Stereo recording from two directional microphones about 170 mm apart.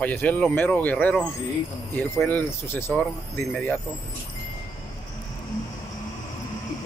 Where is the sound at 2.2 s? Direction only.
10° left (ahead or behind).